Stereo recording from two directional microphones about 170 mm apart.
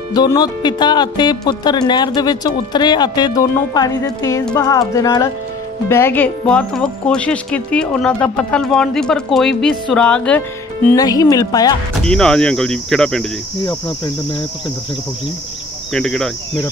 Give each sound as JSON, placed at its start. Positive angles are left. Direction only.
{"t": 0.1, "sound": "speech", "side_deg": 25}
{"t": 11.0, "sound": "speech", "side_deg": 20}
{"t": 12.0, "sound": "cricket", "side_deg": 5}
{"t": 15.9, "sound": "cricket", "side_deg": 5}